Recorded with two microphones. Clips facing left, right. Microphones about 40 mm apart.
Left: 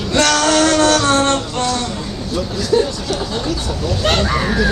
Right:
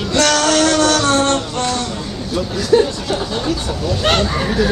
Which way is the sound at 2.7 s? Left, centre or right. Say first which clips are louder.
Right 3 dB; right.